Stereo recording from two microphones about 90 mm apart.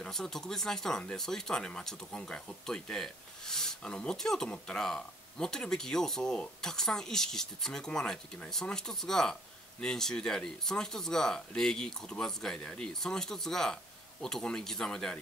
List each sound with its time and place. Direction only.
0.0 s speech: 5° left (ahead or behind)